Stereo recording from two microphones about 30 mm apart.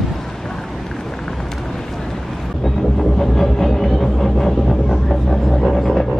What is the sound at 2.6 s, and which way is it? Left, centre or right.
Train, centre.